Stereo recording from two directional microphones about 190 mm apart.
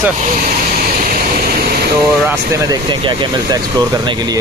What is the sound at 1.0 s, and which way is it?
Air conditioning, 45° right (ahead or behind).